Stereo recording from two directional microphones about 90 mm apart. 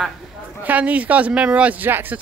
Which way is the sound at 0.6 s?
15° right (ahead or behind).